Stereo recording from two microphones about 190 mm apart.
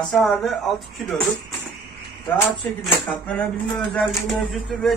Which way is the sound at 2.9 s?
5° left (ahead or behind).